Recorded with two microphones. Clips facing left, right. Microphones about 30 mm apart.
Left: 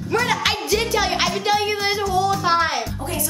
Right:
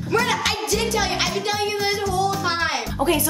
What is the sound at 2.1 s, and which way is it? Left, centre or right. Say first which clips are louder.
Music: left 3 dB; centre.